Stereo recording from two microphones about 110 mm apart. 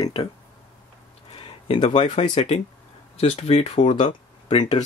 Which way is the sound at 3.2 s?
65° left (ahead or behind).